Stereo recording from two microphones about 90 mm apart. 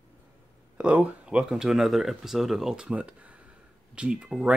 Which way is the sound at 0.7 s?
15° right (ahead or behind).